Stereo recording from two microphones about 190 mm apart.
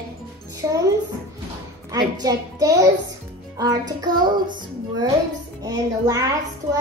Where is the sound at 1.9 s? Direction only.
20° right (ahead or behind).